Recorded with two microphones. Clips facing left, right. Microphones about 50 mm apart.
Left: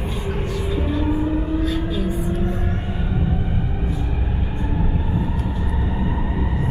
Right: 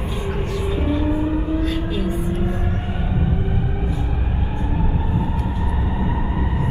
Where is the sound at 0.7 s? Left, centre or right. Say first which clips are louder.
Right 2 dB; centre.